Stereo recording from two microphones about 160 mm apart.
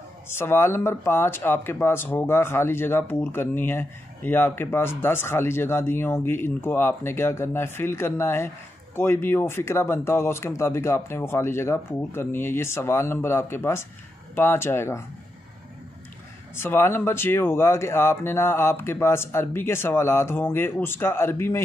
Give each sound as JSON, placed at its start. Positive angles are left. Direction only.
{"t": 0.3, "sound": "speech", "side_deg": 15}
{"t": 16.5, "sound": "speech", "side_deg": 15}